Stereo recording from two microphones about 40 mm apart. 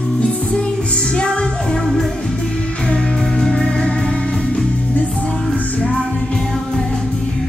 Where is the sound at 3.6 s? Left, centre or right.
Left.